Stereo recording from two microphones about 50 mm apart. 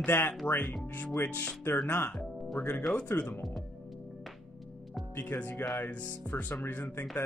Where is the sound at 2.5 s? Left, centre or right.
Left.